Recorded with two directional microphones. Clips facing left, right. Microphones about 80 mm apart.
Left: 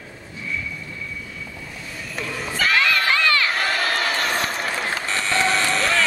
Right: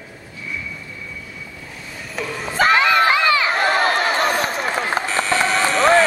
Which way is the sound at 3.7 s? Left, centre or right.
Right.